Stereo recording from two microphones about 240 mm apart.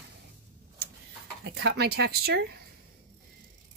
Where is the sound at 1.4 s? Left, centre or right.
Right.